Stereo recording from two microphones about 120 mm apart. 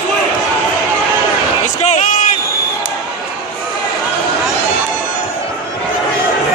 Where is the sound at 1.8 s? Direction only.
85° left.